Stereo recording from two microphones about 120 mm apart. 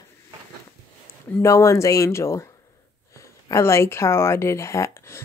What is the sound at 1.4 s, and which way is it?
Speech, 25° left (ahead or behind).